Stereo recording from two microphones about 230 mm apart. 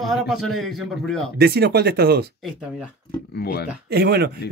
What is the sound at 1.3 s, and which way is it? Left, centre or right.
Speech, right.